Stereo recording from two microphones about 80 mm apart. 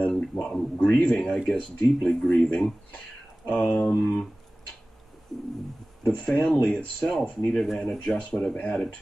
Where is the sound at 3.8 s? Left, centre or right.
Left.